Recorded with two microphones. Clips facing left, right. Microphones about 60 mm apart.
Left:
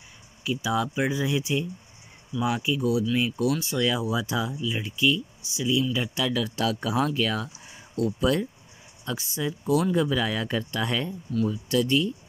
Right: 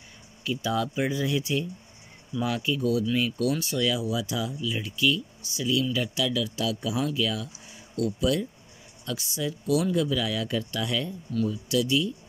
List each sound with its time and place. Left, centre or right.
0.4 s speech: centre
5.9 s speech: left